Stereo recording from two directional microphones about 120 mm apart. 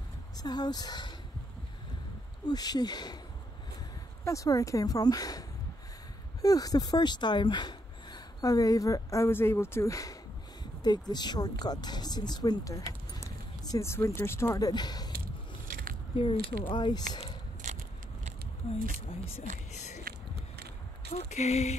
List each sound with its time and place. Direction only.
0.4 s speech: 35° left (ahead or behind)
2.4 s speech: 35° left (ahead or behind)
4.2 s speech: 25° left (ahead or behind)
6.4 s speech: 30° left (ahead or behind)
14.7 s speech: 35° left (ahead or behind)
16.2 s speech: 50° left (ahead or behind)
16.7 s speech: 35° left (ahead or behind)
18.7 s speech: 55° left (ahead or behind)
19.7 s a sound: 75° left (ahead or behind)
21.1 s a sound: 70° left (ahead or behind)